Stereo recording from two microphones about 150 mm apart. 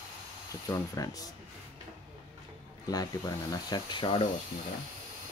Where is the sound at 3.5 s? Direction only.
30° left (ahead or behind).